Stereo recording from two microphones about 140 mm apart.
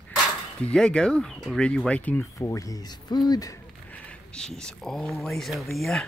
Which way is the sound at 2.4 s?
25° left (ahead or behind).